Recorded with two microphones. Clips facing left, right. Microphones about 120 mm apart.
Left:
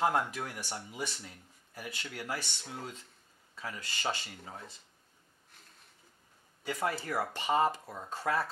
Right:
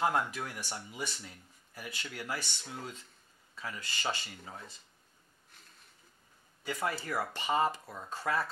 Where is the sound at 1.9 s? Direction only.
45° left (ahead or behind).